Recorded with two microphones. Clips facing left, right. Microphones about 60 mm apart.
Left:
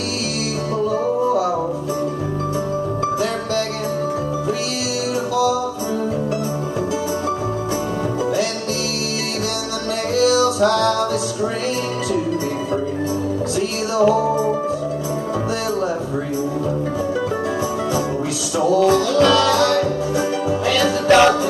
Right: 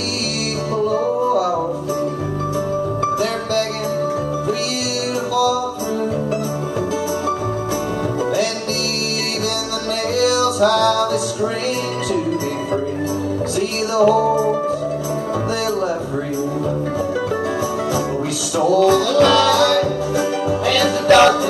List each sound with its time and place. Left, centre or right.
0.9 s music: right
10.1 s music: right
10.6 s music: left
14.0 s music: right
18.6 s music: right
19.4 s music: left
19.8 s music: right
20.7 s music: left